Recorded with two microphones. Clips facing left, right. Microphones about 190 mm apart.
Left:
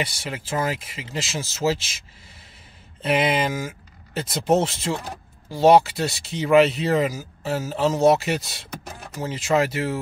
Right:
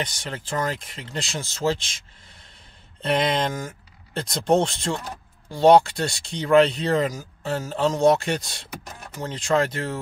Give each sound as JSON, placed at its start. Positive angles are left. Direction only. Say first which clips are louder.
{"t": 0.0, "sound": "speech", "louder": "left 2 dB", "side_deg": 10}